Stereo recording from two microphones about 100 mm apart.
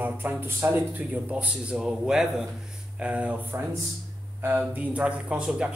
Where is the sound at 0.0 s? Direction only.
20° right (ahead or behind).